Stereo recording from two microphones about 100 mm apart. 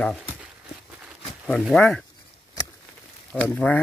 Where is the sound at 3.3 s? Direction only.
10° left (ahead or behind).